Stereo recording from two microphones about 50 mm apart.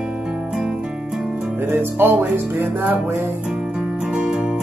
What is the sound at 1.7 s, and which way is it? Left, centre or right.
Music, right.